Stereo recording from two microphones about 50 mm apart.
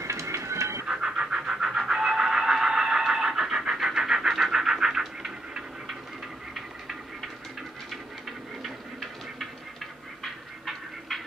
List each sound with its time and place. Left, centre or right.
0.0 s train: right
0.8 s vehicle: centre
7.9 s a sound: centre